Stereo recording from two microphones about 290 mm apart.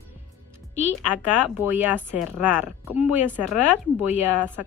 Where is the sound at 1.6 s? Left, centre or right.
Centre.